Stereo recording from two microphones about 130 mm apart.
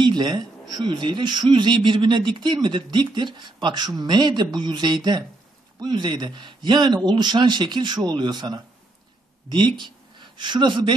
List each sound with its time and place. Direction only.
0.0 s a man's voice: 35° right (ahead or behind)